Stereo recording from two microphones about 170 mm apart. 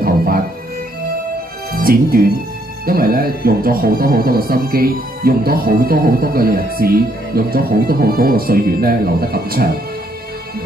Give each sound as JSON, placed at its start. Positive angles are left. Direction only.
{"t": 0.0, "sound": "music", "side_deg": -60}
{"t": 1.7, "sound": "speech", "side_deg": -60}